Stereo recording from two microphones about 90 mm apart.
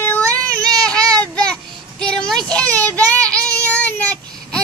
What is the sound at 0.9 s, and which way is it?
Child singing, 10° left (ahead or behind).